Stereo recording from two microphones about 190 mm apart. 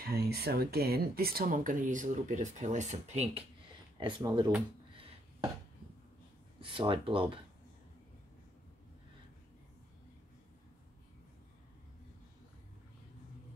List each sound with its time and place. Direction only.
0.0 s speech: 55° right (ahead or behind); by 3.4 s 35° right (ahead or behind)
4.0 s speech: 25° right (ahead or behind)
6.6 s speech: 25° right (ahead or behind)